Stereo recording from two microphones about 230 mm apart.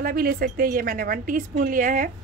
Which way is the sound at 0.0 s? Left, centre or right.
Right.